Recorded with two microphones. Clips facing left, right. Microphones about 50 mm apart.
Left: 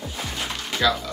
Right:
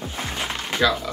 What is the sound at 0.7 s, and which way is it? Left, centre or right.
Typing, right.